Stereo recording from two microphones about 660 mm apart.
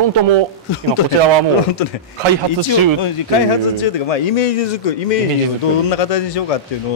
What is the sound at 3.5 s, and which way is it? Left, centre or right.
A man's voice, left.